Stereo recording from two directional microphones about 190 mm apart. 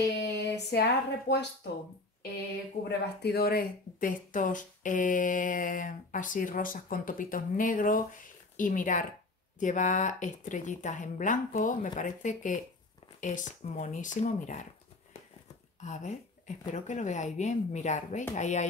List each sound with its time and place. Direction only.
0.2 s speech: 60° left (ahead or behind)
2.8 s speech: 40° left (ahead or behind)
3.2 s speech: 55° left (ahead or behind); by 14.7 s 40° left (ahead or behind)
15.8 s speech: 40° left (ahead or behind)